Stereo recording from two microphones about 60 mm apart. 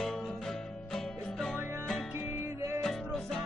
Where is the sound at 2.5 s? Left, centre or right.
Right.